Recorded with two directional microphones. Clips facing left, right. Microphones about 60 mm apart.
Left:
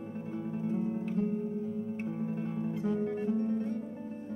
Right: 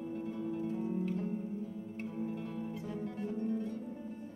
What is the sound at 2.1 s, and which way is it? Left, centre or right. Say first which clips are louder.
Guitar: left 1 dB; left.